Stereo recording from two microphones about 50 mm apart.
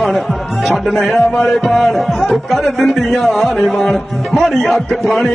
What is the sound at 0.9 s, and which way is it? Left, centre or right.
Speech, centre.